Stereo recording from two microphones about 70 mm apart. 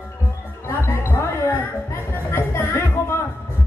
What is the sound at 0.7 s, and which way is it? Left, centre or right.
Music, left.